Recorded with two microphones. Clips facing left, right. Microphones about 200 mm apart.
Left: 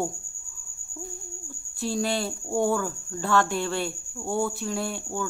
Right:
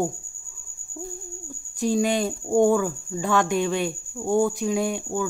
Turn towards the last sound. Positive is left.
turn(degrees=-15)  # may be behind; listen again after turning